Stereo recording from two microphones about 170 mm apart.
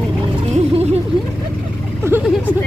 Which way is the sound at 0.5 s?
40° right (ahead or behind).